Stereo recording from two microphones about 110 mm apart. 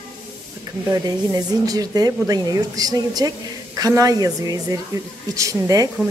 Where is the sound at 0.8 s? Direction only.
30° right (ahead or behind).